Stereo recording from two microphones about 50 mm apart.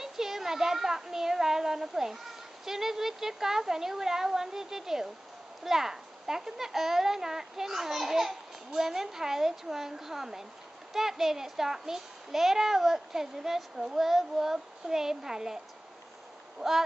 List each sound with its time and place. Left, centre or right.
0.0 s a child's voice: centre